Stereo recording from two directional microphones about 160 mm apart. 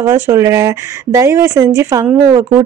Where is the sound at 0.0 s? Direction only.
20° right (ahead or behind).